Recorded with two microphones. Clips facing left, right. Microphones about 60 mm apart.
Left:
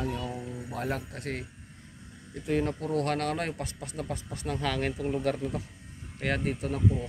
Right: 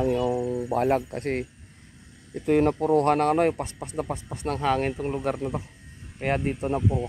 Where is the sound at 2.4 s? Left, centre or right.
Right.